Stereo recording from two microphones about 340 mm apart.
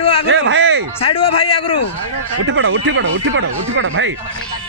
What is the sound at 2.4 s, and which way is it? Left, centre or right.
Speech, right.